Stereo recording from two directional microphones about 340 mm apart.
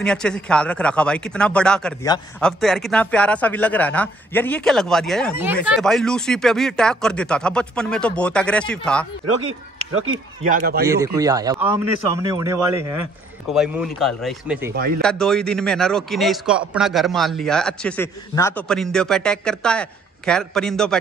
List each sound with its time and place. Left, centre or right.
0.0 s speech: centre
9.9 s speech: right
10.4 s speech: right
11.1 s a man's voice: centre
14.7 s speech: right
15.0 s speech: centre